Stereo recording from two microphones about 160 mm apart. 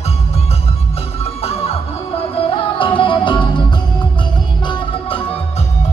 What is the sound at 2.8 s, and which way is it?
Music, 30° left (ahead or behind).